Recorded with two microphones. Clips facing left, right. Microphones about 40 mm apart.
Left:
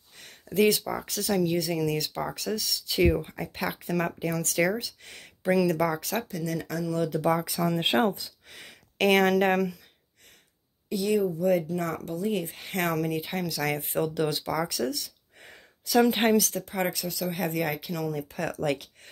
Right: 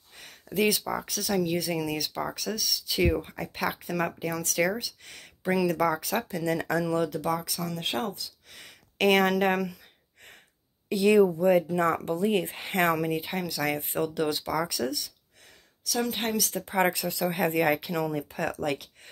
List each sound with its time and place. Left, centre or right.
0.2 s speech: centre
6.2 s speech: right
7.1 s speech: centre
7.8 s speech: left
8.5 s speech: centre
10.9 s speech: right
11.3 s speech: right
12.8 s speech: centre
16.0 s a woman's voice: centre
16.3 s speech: centre
16.6 s speech: right
18.3 s speech: centre